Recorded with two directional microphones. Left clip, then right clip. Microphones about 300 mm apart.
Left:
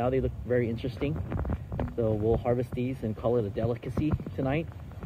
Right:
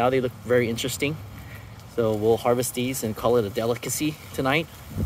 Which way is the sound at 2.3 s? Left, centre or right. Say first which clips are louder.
Right 6 dB; centre.